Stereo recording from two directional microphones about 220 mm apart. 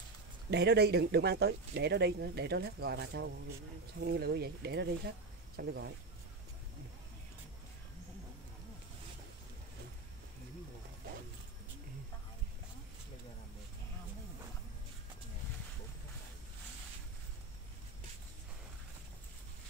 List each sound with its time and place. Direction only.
0.5 s speech: 50° right (ahead or behind)